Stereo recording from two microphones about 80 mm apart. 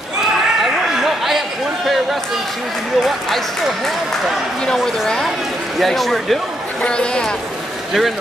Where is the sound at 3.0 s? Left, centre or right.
Centre.